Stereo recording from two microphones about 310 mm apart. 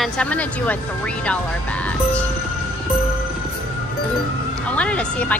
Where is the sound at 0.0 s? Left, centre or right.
Centre.